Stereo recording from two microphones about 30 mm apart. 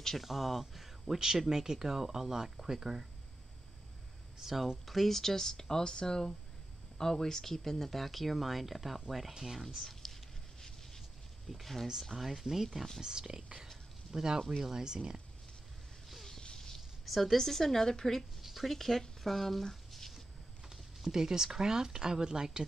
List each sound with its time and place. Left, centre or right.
0.2 s speech: centre
4.4 s speech: centre
4.8 s speech: centre
9.8 s a sound: centre
12.0 s speech: centre
13.0 s speech: right
16.3 s a sound: left
16.7 s a sound: centre
17.4 s speech: centre
18.4 s speech: centre
18.8 s speech: centre
19.7 s squish: centre
21.1 s speech: centre